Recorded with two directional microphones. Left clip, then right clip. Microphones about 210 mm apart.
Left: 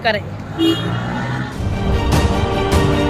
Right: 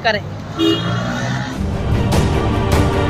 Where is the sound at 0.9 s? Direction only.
55° right (ahead or behind).